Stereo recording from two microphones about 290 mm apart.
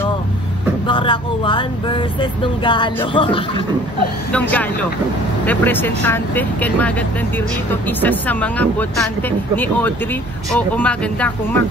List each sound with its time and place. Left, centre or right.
0.8 s speech: centre
4.3 s speech: centre
8.0 s speech: centre